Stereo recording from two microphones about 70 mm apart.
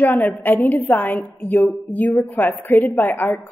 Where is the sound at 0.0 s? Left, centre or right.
Left.